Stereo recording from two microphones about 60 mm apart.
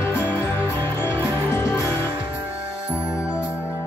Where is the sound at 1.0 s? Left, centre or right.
Left.